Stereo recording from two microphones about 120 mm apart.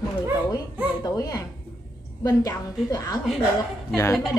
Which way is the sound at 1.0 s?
30° left (ahead or behind).